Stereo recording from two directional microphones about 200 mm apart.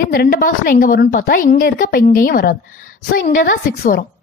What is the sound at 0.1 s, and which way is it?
A woman's voice, 45° left (ahead or behind).